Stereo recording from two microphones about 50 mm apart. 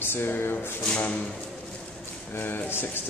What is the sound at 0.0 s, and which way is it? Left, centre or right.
Speech, left.